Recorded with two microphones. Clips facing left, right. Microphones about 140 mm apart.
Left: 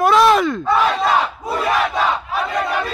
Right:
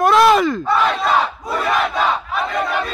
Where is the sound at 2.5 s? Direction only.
Centre (ahead or behind).